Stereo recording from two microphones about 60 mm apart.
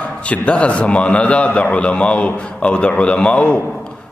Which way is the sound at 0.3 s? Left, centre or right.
Left.